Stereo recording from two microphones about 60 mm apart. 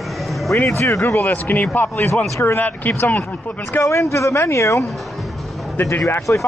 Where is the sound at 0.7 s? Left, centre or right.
Left.